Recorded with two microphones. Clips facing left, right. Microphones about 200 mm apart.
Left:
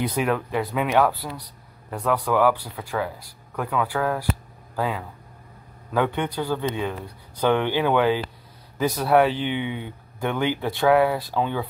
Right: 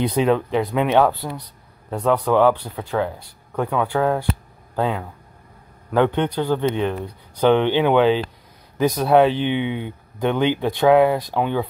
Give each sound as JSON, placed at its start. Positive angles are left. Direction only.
{"t": 0.0, "sound": "speech", "side_deg": -25}
{"t": 5.9, "sound": "speech", "side_deg": -20}